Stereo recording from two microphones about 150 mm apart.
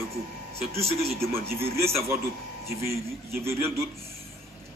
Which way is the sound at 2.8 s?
15° right (ahead or behind).